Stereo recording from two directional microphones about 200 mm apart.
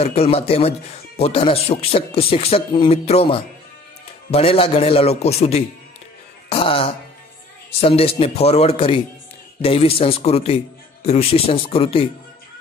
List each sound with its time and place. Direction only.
0.0 s a man's voice: 30° left (ahead or behind)